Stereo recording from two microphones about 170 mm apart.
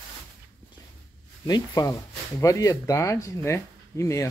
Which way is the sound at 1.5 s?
20° left (ahead or behind).